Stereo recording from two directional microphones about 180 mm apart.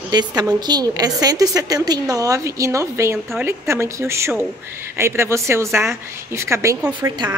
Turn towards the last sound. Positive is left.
turn(degrees=-15)  # may be behind; listen again after turning